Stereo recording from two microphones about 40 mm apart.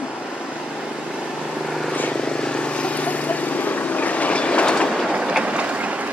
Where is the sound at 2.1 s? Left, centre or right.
Left.